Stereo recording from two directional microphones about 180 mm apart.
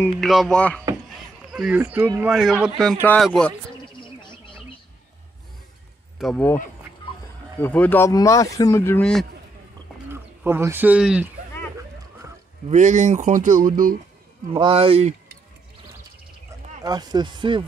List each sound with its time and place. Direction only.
0.2 s speech: centre (ahead or behind)
6.1 s speech: centre (ahead or behind)
7.6 s speech: 10° left (ahead or behind)
10.1 s speech: 15° right (ahead or behind)
12.6 s speech: 40° right (ahead or behind)
14.5 s speech: 30° right (ahead or behind)
16.8 s speech: 20° right (ahead or behind)